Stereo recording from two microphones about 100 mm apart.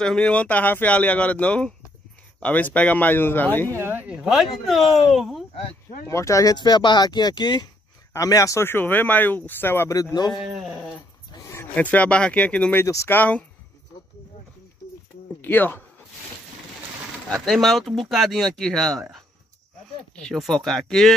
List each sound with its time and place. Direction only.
0.0 s speech: 10° left (ahead or behind)
3.7 s speech: 25° right (ahead or behind); by 5.4 s centre (ahead or behind)
6.0 s speech: 30° left (ahead or behind)
6.5 s speech: 45° left (ahead or behind)
8.1 s speech: 35° left (ahead or behind)
9.8 s speech: 35° left (ahead or behind)
10.3 s speech: centre (ahead or behind)
11.7 s speech: 15° left (ahead or behind)
12.8 s speech: 30° left (ahead or behind)
13.1 s speech: 15° left (ahead or behind)
15.4 s speech: 20° left (ahead or behind)
17.5 s speech: centre (ahead or behind)
20.2 s speech: 5° left (ahead or behind)